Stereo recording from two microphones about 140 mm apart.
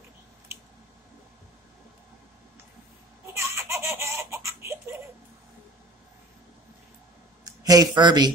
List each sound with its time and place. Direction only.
3.3 s baby laughter: 20° right (ahead or behind)
7.4 s speech: 25° right (ahead or behind)